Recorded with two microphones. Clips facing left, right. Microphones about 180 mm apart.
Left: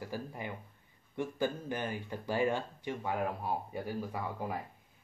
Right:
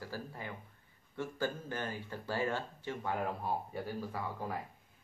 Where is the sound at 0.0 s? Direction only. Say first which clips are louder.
Left 3 dB; 15° left (ahead or behind).